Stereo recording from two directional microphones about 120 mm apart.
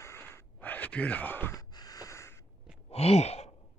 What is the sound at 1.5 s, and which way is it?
Gasp, 30° left (ahead or behind).